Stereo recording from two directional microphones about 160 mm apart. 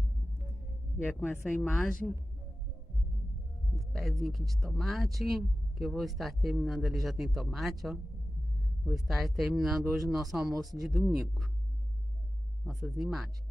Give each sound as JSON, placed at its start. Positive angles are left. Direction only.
{"t": 1.4, "sound": "speech", "side_deg": 0}
{"t": 3.7, "sound": "speech", "side_deg": 0}
{"t": 12.6, "sound": "speech", "side_deg": 0}